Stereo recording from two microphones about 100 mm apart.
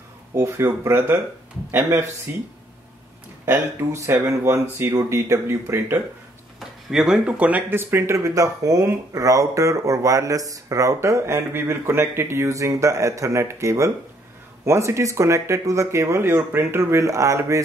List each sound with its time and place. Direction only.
0.3 s speech: 25° right (ahead or behind)
6.6 s speech: 5° right (ahead or behind); by 17.6 s 30° right (ahead or behind)